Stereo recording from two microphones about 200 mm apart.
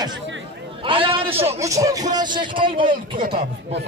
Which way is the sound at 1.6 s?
15° right (ahead or behind).